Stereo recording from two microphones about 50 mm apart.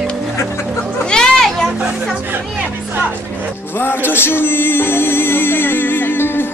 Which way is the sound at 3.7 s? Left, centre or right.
Left.